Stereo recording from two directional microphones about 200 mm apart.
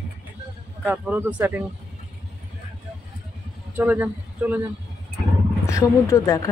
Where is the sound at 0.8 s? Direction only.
10° right (ahead or behind).